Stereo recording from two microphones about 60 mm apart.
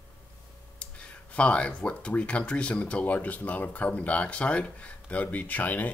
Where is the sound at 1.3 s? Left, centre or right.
Centre.